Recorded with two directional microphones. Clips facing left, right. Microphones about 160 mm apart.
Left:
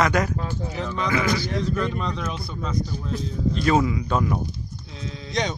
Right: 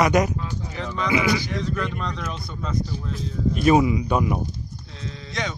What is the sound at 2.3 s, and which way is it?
Speech, 5° left (ahead or behind).